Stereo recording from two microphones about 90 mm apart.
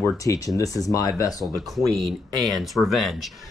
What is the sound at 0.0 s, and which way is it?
Speech, 35° left (ahead or behind).